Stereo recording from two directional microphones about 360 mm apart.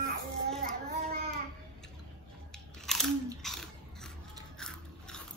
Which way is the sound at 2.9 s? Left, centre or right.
Centre.